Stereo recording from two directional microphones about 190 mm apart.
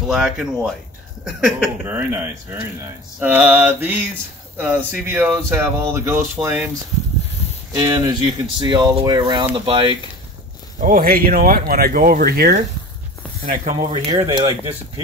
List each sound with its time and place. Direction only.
0.0 s speech: centre (ahead or behind)
7.7 s speech: 20° right (ahead or behind)
10.8 s speech: 45° right (ahead or behind)
13.7 s speech: 25° right (ahead or behind)